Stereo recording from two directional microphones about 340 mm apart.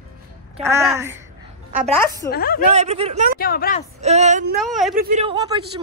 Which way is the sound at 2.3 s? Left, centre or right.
Left.